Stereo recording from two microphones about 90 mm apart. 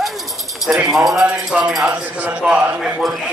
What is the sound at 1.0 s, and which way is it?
Speech, 5° right (ahead or behind).